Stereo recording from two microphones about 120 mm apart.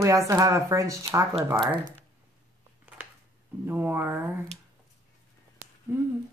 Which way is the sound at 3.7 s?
20° right (ahead or behind).